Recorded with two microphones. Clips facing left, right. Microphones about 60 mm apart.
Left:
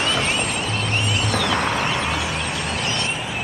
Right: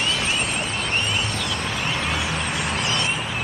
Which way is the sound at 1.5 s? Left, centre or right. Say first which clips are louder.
Left 5 dB; left.